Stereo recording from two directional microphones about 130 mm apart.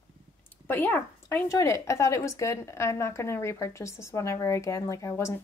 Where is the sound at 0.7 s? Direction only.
15° left (ahead or behind).